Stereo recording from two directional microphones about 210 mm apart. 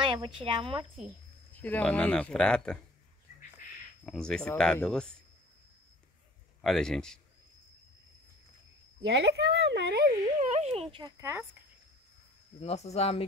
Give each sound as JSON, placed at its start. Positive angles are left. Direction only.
{"t": 0.0, "sound": "speech", "side_deg": -25}
{"t": 1.5, "sound": "speech", "side_deg": 10}
{"t": 4.0, "sound": "speech", "side_deg": 0}
{"t": 6.6, "sound": "speech", "side_deg": 0}
{"t": 9.0, "sound": "speech", "side_deg": -55}
{"t": 12.5, "sound": "speech", "side_deg": 30}